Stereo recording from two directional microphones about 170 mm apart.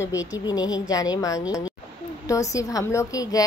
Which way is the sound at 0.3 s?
20° left (ahead or behind).